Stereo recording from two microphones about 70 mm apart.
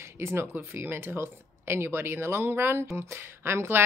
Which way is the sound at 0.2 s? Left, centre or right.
Right.